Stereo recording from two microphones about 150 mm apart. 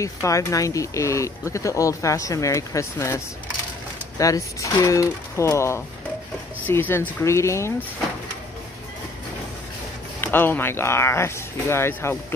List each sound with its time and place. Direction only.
0.0 s speech: 20° left (ahead or behind)
4.2 s speech: 20° left (ahead or behind)
10.2 s speech: 15° left (ahead or behind)